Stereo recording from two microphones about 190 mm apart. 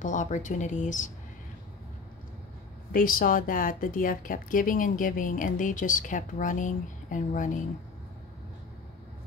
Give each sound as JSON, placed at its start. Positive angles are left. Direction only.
{"t": 0.0, "sound": "speech", "side_deg": 40}
{"t": 2.9, "sound": "a woman's voice", "side_deg": 50}